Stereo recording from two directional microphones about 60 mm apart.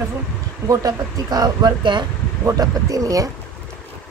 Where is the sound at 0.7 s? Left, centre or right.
Right.